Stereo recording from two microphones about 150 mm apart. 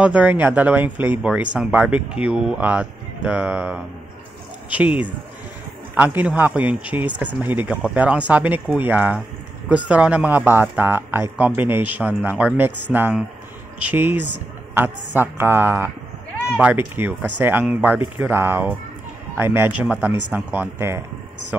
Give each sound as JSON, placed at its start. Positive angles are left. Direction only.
{"t": 0.0, "sound": "speech", "side_deg": -10}